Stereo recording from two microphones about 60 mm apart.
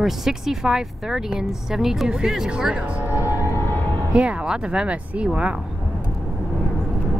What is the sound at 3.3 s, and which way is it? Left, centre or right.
Music, left.